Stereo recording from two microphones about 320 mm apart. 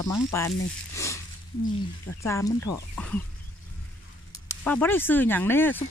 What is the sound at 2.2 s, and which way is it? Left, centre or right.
Speech, centre.